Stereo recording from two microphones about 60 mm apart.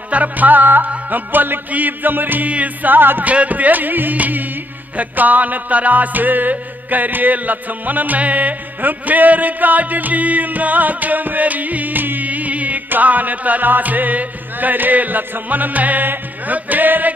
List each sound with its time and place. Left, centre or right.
0.1 s music: right